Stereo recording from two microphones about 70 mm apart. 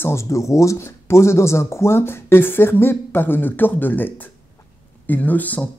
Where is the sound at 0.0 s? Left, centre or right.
Left.